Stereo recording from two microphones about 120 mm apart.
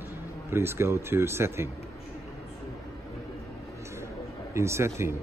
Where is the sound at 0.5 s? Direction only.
20° right (ahead or behind).